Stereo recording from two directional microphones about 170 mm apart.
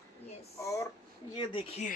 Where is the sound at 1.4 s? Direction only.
30° left (ahead or behind).